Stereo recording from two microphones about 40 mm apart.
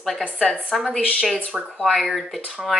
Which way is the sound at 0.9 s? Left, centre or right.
Left.